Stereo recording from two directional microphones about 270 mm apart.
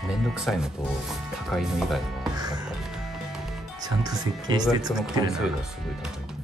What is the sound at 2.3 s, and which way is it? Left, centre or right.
Music, centre.